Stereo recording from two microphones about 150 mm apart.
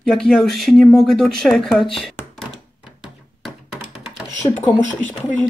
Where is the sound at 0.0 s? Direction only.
5° left (ahead or behind).